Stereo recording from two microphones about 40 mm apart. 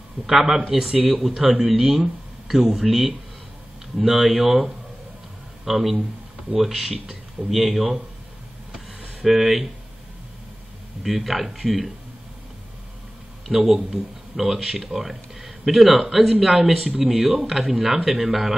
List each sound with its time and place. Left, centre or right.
0.3 s speech: centre
9.2 s speech: centre
11.0 s speech: centre
13.5 s a man's voice: centre